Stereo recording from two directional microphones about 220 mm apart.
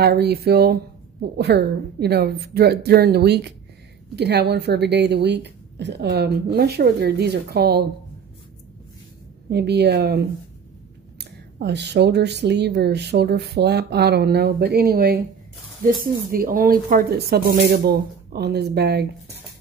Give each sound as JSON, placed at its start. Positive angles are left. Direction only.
{"t": 0.0, "sound": "speech", "side_deg": -45}
{"t": 9.5, "sound": "speech", "side_deg": -50}